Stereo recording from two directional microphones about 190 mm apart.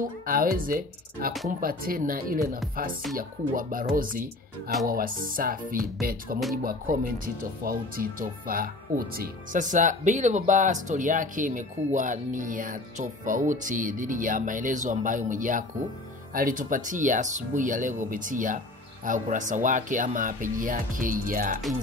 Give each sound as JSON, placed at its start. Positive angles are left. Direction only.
{"t": 0.3, "sound": "speech", "side_deg": -50}